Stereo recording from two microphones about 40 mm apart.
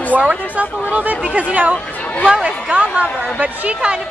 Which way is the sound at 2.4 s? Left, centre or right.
Right.